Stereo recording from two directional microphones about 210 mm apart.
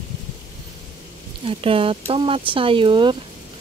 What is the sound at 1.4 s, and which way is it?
Speech, 25° right (ahead or behind).